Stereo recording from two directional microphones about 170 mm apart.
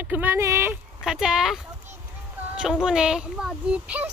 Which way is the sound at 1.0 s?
5° right (ahead or behind).